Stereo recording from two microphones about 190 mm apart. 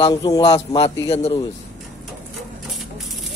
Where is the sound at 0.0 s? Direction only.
20° left (ahead or behind).